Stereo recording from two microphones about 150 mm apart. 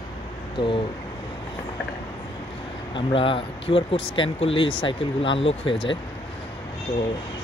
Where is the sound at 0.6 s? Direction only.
30° left (ahead or behind).